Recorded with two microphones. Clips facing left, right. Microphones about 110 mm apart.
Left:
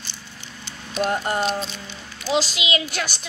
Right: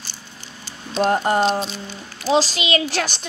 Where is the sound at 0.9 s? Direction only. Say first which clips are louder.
Right 5 dB; 30° right (ahead or behind).